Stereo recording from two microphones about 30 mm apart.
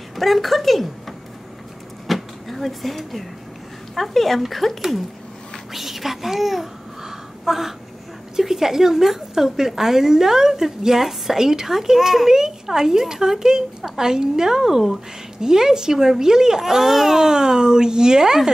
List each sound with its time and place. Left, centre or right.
0.1 s speech: centre
2.0 s cupboard open or close: centre
3.9 s speech: centre
5.7 s babbling: centre
8.4 s a woman's voice: centre
17.2 s speech: right